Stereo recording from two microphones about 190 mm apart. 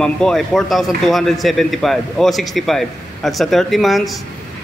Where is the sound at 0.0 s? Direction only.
Centre (ahead or behind).